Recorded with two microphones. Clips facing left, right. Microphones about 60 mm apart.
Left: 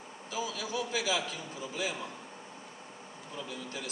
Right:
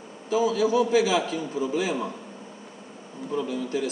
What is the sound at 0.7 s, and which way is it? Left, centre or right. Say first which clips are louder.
A man's voice: right 8 dB; right.